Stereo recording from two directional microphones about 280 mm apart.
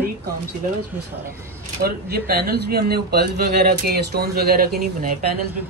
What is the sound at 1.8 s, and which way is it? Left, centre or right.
Speech, right.